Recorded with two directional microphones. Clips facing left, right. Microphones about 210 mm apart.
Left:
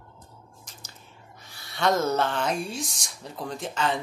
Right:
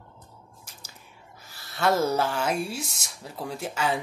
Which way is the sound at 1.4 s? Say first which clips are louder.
Even; 5° right (ahead or behind).